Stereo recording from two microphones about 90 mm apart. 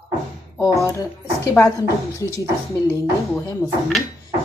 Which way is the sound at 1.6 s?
25° left (ahead or behind).